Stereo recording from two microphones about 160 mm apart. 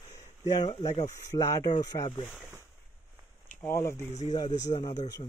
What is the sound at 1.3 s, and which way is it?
Speech, 25° left (ahead or behind).